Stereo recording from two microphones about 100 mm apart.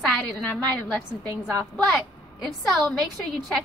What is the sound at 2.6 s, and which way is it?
Speech, 5° left (ahead or behind).